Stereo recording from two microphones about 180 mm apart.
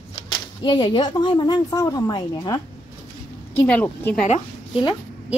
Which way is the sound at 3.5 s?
10° left (ahead or behind).